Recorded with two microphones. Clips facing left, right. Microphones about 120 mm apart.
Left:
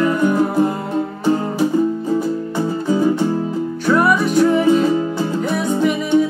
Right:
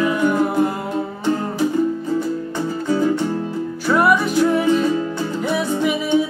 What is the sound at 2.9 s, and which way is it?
Music, 15° left (ahead or behind).